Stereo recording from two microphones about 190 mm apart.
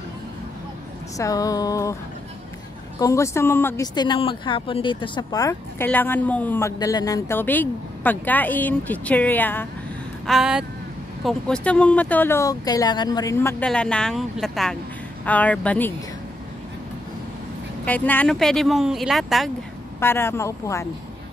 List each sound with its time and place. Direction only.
1.1 s speech: 20° left (ahead or behind)
3.0 s speech: 15° left (ahead or behind)
10.2 s speech: centre (ahead or behind)
17.8 s speech: 10° left (ahead or behind)
20.0 s speech: 10° left (ahead or behind)